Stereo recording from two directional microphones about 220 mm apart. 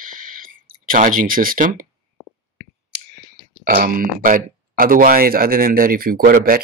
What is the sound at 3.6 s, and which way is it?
Speech, 45° right (ahead or behind).